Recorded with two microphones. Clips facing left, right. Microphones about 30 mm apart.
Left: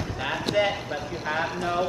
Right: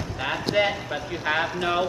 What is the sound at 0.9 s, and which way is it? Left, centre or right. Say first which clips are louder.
Speech: right 3 dB; right.